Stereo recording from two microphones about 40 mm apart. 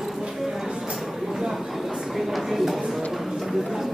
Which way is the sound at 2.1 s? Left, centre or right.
Centre.